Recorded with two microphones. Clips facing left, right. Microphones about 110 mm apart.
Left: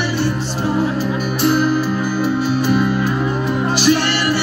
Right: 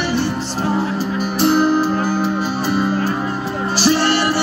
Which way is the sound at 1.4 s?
45° right (ahead or behind).